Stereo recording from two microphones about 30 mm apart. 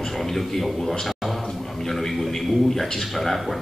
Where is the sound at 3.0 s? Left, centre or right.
Centre.